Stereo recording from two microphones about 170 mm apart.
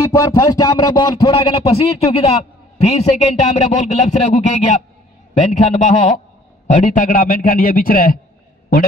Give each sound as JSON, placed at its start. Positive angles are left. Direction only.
{"t": 0.0, "sound": "a man's voice", "side_deg": 20}